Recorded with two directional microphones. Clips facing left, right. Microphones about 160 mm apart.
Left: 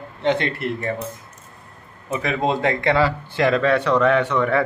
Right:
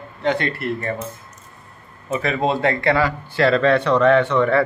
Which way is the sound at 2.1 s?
15° left (ahead or behind).